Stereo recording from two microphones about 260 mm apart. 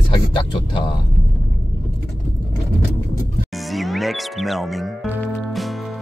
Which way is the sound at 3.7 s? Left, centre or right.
Centre.